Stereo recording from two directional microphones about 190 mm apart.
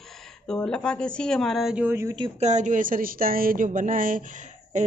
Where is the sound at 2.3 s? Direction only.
40° right (ahead or behind).